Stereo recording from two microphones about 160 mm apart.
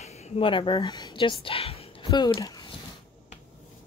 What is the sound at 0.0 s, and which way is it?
Speech, 45° left (ahead or behind).